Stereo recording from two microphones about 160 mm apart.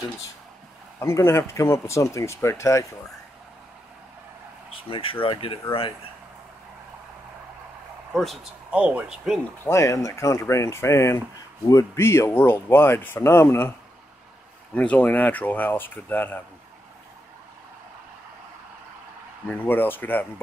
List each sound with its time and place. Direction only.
0.9 s speech: 15° left (ahead or behind)
4.7 s speech: 35° left (ahead or behind)
8.1 s speech: centre (ahead or behind)
9.7 s speech: 20° left (ahead or behind)
19.5 s speech: 10° left (ahead or behind)